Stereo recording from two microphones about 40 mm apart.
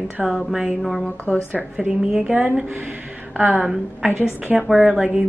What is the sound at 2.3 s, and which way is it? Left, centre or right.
Speech, right.